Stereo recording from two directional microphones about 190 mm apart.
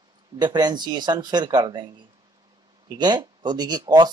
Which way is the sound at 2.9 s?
20° right (ahead or behind).